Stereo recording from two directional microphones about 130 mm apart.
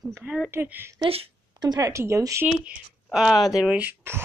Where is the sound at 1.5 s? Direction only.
30° right (ahead or behind).